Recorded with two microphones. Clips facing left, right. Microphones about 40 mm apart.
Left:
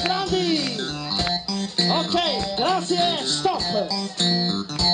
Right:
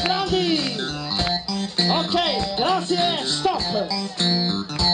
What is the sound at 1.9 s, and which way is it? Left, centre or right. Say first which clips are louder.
Music: right 1 dB; right.